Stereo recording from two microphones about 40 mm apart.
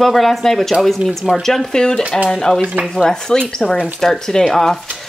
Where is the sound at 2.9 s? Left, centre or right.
Centre.